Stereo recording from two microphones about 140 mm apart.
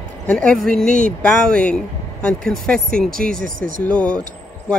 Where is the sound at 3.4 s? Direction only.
80° right.